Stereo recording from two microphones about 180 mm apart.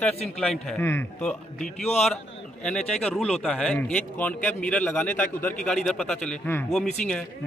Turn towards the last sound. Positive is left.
turn(degrees=5)  # may be behind; listen again after turning